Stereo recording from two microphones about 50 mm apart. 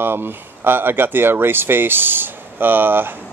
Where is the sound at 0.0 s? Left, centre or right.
Right.